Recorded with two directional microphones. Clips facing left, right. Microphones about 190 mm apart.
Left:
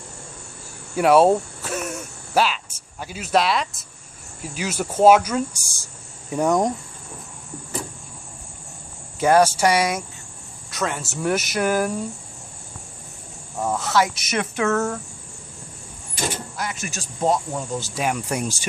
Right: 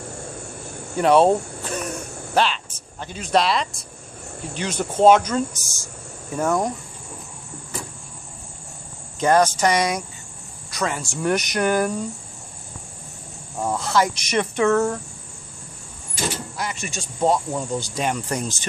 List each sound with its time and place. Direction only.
0.9 s a sound: 5° left (ahead or behind)
4.4 s speech: 5° left (ahead or behind)
9.2 s speech: 10° left (ahead or behind)
13.6 s speech: centre (ahead or behind)
16.5 s speech: centre (ahead or behind)